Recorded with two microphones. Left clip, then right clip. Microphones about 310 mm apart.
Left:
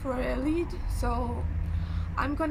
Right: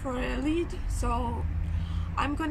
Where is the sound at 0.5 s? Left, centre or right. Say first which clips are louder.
Even; right.